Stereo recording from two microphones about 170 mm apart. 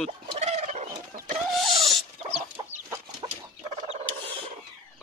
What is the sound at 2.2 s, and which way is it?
Chicken, 35° right (ahead or behind).